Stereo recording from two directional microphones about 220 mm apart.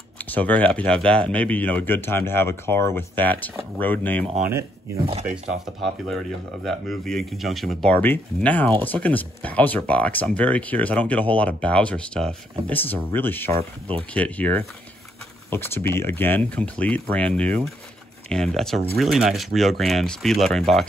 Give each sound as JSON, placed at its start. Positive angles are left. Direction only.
{"t": 0.2, "sound": "speech", "side_deg": 5}
{"t": 6.0, "sound": "speech", "side_deg": 0}
{"t": 13.6, "sound": "speech", "side_deg": -25}
{"t": 14.1, "sound": "speech", "side_deg": 5}